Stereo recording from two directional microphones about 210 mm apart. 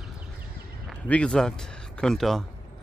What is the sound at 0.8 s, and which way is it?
Speech, 5° left (ahead or behind).